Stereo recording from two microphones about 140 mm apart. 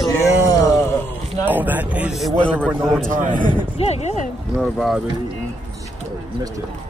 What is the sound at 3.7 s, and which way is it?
Speech, 50° left (ahead or behind).